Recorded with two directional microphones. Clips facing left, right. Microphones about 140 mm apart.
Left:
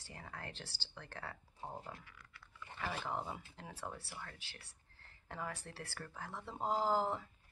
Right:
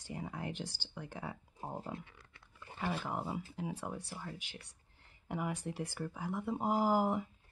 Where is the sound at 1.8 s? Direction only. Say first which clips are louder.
Right 7 dB; 25° right (ahead or behind).